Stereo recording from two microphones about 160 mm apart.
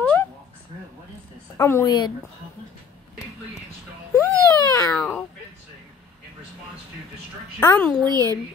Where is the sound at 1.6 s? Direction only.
15° left (ahead or behind).